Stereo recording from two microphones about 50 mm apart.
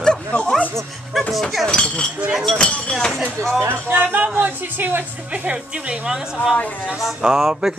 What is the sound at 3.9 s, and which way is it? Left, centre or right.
Speech, right.